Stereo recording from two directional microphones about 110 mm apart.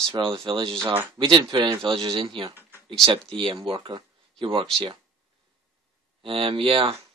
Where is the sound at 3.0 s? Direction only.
55° right (ahead or behind).